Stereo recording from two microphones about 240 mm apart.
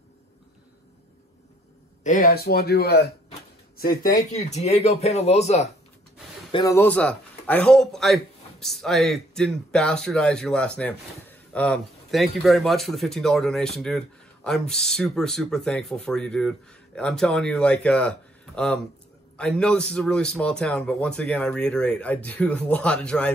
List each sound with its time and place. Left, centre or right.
2.0 s speech: left
4.3 s speech: left
6.5 s a man's voice: centre